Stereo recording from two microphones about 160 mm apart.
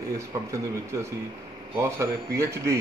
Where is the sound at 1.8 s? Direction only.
20° right (ahead or behind).